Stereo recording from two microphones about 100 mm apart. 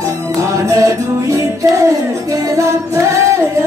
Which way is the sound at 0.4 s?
30° right (ahead or behind).